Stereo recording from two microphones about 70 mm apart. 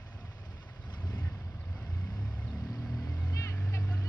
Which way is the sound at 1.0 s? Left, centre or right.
Left.